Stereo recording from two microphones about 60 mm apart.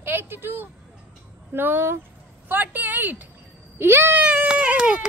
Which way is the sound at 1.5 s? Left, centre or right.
Right.